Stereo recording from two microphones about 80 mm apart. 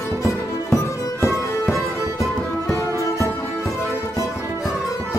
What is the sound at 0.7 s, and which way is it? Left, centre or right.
Music, left.